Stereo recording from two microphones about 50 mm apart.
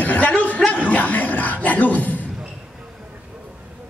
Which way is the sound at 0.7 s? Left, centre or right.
Left.